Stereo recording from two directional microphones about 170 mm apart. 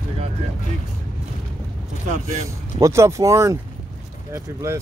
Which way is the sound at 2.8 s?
15° right (ahead or behind).